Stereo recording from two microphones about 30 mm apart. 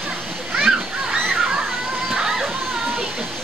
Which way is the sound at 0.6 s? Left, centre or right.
Right.